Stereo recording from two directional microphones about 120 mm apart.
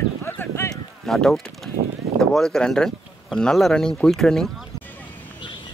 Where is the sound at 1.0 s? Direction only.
5° left (ahead or behind).